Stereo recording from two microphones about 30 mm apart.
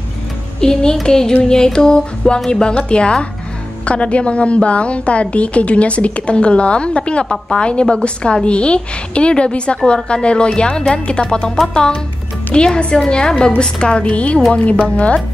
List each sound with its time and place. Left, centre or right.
0.6 s music: left
2.6 s a woman's voice: left
11.7 s music: left
13.6 s a woman's voice: left